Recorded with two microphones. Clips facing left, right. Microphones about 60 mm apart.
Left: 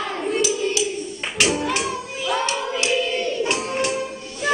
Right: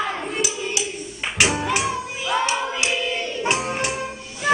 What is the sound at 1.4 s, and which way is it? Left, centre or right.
Music, right.